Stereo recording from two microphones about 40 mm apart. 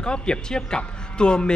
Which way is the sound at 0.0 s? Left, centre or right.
Left.